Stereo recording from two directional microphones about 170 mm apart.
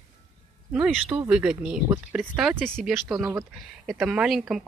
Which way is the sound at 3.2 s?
20° right (ahead or behind).